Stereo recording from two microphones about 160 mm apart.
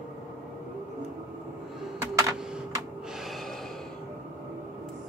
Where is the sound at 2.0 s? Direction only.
20° right (ahead or behind).